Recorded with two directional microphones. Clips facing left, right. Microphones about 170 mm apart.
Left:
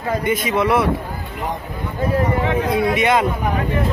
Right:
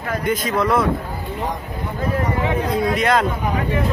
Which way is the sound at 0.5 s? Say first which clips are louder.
Left 2 dB; 10° left (ahead or behind).